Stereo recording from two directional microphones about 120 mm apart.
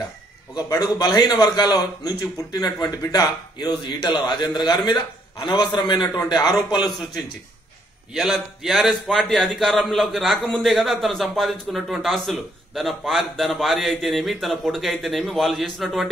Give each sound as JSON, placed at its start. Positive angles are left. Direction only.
{"t": 0.6, "sound": "a man's voice", "side_deg": 35}
{"t": 6.9, "sound": "speech", "side_deg": 0}